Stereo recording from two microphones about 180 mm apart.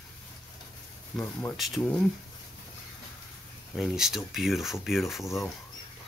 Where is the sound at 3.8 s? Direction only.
Centre (ahead or behind).